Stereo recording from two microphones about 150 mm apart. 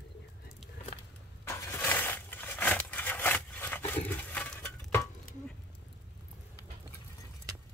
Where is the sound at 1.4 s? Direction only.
20° left (ahead or behind).